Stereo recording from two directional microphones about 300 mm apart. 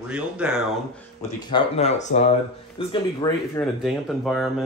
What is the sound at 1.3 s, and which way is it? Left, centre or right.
Speech, centre.